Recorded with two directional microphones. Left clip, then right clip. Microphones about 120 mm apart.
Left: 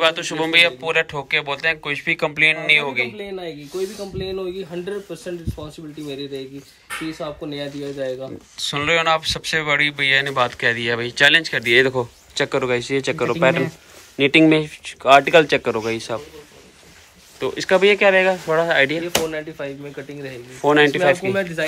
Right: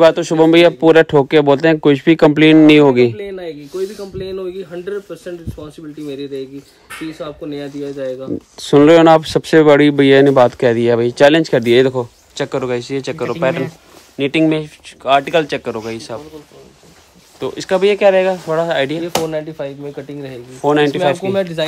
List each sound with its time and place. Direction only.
0.0 s speech: 60° right (ahead or behind); by 3.2 s 90° right
4.2 s speech: 10° left (ahead or behind)
7.2 s speech: 15° left (ahead or behind)
8.5 s speech: 90° right; by 11.9 s 45° right (ahead or behind)
11.9 s speech: 25° right (ahead or behind)
17.4 s speech: 25° right (ahead or behind)
20.6 s speech: 25° right (ahead or behind)